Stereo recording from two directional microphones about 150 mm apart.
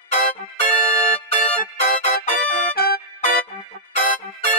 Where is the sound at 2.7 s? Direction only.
90° left.